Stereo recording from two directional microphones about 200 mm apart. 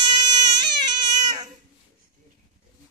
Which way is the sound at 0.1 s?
20° right (ahead or behind).